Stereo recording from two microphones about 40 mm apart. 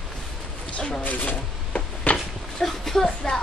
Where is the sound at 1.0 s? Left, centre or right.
Left.